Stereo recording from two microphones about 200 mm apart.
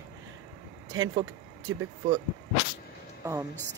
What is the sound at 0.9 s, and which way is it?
Speech, 20° right (ahead or behind).